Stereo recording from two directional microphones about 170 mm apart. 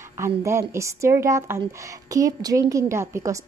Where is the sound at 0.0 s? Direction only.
15° right (ahead or behind).